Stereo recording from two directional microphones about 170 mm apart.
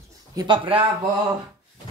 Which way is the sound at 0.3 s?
25° right (ahead or behind).